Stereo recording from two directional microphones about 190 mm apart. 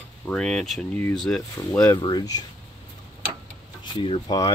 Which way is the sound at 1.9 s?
20° left (ahead or behind).